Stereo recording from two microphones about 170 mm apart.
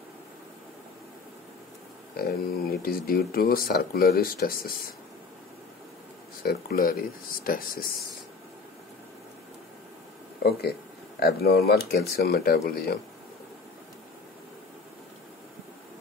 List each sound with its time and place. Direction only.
2.1 s speech: 65° left (ahead or behind)
6.4 s speech: 65° left (ahead or behind)
10.4 s speech: 65° left (ahead or behind)